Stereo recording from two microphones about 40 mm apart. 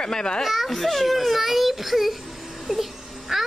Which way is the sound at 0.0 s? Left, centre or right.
Centre.